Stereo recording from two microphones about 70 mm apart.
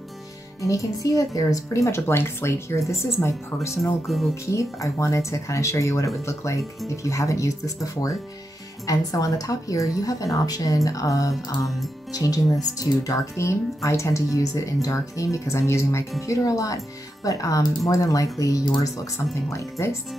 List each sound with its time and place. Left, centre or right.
0.6 s speech: left
3.2 s speech: left
3.6 s a woman's voice: left
16.2 s a woman's voice: left
19.5 s speech: left